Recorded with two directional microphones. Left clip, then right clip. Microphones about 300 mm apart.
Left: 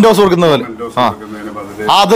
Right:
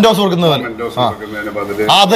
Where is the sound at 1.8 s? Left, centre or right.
Centre.